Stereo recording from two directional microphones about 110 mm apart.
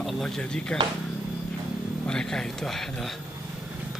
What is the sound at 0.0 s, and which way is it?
Speech, 5° left (ahead or behind).